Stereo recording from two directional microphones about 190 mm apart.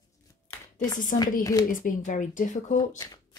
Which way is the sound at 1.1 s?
40° left (ahead or behind).